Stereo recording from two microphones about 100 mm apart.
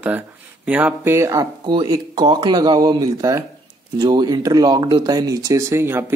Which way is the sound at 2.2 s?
45° right (ahead or behind).